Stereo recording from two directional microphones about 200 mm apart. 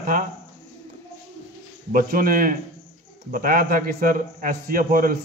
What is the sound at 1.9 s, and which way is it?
A man's voice, 45° right (ahead or behind).